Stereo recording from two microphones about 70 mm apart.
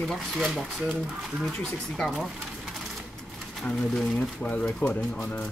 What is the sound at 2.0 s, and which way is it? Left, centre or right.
Speech, centre.